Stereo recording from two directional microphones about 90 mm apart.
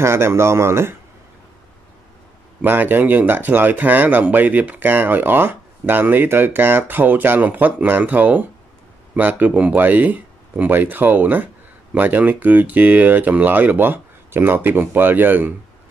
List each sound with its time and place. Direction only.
0.0 s speech: 30° right (ahead or behind)
2.6 s speech: 20° right (ahead or behind)